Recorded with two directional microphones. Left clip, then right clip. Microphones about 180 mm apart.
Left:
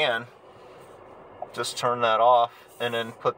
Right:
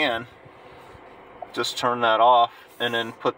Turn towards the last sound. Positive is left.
turn(degrees=-35)  # may be behind; listen again after turning